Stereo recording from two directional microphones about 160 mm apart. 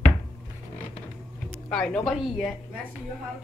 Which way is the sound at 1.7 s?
5° left (ahead or behind).